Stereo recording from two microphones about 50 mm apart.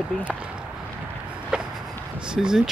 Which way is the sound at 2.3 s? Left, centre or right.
Centre.